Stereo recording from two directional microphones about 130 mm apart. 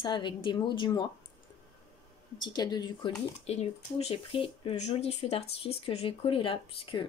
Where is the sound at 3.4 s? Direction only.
55° left (ahead or behind).